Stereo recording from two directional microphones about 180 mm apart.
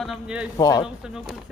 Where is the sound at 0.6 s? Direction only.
20° left (ahead or behind).